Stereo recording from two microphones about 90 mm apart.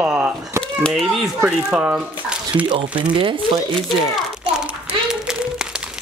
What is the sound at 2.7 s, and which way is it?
Speech, 70° right (ahead or behind).